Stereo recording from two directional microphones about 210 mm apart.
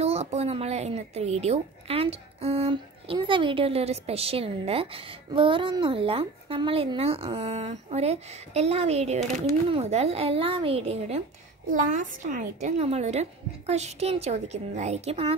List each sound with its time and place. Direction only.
0.0 s a woman's voice: 30° right (ahead or behind)